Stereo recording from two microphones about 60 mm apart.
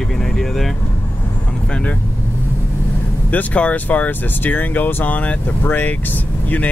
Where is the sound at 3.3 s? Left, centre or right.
Left.